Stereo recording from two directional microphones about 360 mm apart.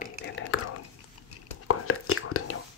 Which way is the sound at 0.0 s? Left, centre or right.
Left.